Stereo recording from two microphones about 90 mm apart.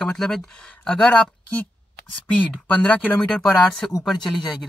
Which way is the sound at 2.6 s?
15° left (ahead or behind).